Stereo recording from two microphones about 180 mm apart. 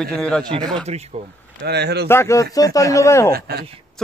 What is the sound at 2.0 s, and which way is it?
Speech, 15° left (ahead or behind).